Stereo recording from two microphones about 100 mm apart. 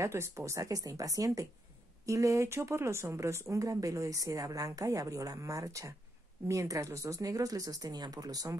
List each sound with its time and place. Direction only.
0.0 s speech: 30° right (ahead or behind)